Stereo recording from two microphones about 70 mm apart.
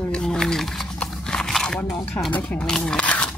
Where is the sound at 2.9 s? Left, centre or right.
Centre.